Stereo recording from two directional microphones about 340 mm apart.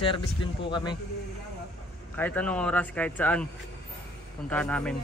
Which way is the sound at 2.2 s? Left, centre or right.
Centre.